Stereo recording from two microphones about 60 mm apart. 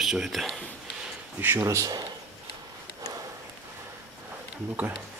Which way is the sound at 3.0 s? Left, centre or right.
Right.